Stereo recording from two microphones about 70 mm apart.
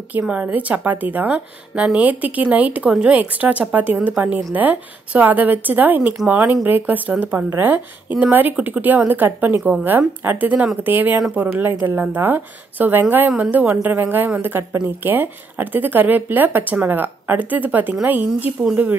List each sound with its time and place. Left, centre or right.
0.3 s speech: right
1.8 s a woman's voice: centre
2.0 s speech: right